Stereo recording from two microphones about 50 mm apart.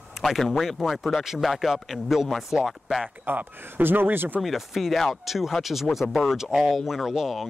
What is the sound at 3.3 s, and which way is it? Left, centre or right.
Speech, right.